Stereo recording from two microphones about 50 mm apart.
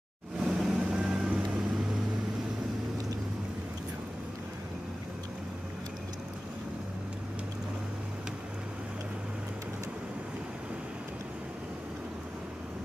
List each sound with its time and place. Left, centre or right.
0.4 s vehicle: centre